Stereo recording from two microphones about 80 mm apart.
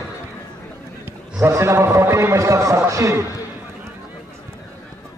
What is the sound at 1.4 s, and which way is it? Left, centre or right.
A man's voice, right.